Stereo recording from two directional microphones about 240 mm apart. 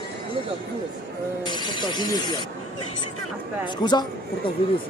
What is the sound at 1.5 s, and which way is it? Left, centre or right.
Speech, centre.